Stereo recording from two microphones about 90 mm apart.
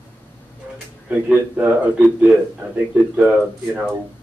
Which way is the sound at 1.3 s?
15° right (ahead or behind).